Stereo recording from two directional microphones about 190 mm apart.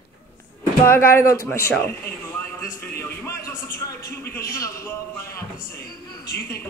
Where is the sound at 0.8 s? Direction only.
15° left (ahead or behind).